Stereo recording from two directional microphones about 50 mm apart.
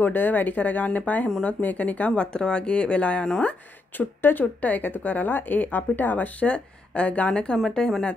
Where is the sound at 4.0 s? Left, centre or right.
Left.